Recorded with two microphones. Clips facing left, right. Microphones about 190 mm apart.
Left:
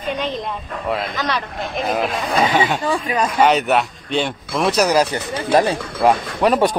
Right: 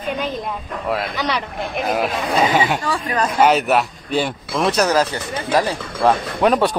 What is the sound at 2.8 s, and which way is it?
Speech, 15° left (ahead or behind).